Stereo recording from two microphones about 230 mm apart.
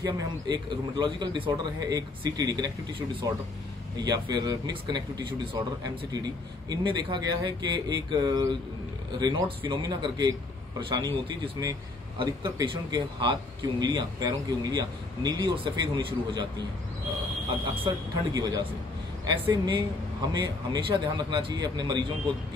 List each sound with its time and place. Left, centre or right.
0.0 s a man's voice: centre
4.0 s a man's voice: centre
12.2 s a man's voice: centre
17.8 s a man's voice: centre